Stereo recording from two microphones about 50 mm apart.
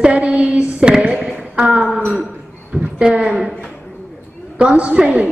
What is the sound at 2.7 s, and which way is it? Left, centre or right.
Speech, centre.